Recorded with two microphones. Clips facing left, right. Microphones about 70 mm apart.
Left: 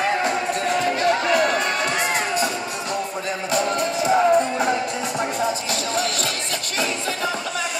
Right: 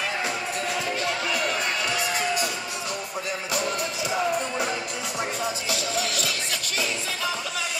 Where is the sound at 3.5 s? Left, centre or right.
Left.